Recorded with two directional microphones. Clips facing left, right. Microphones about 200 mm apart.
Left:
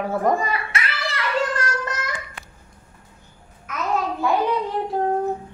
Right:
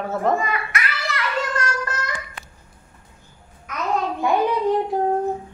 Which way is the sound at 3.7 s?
Centre (ahead or behind).